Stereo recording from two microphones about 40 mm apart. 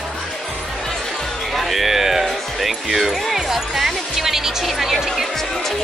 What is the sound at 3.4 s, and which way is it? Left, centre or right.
Speech, centre.